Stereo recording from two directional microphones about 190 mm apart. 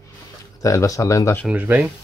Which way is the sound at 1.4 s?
10° right (ahead or behind).